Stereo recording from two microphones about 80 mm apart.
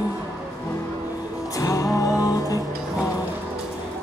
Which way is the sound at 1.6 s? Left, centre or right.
Left.